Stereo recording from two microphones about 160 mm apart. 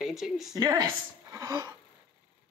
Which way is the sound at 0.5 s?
25° right (ahead or behind).